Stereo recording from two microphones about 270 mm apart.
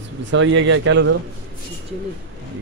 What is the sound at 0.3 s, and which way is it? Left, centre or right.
Speech, right.